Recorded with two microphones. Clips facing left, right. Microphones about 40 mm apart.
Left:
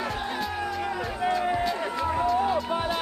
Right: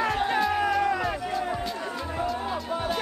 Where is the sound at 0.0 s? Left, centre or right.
Right.